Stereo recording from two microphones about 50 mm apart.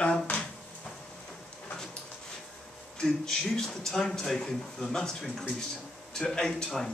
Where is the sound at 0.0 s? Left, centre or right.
Left.